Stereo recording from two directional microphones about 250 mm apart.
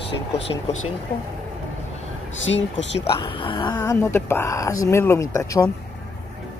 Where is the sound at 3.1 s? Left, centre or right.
Centre.